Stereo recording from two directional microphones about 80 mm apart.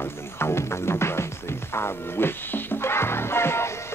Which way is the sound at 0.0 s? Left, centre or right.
Left.